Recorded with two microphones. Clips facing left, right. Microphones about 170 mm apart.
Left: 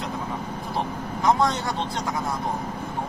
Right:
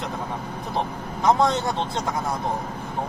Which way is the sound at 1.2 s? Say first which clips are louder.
Right 2 dB; 20° right (ahead or behind).